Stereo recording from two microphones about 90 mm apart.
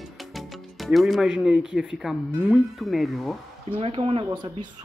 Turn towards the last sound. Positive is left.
turn(degrees=-90)